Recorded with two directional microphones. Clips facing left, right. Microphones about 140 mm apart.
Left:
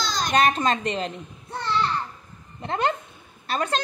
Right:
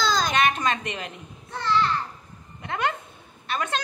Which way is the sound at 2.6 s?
30° left (ahead or behind).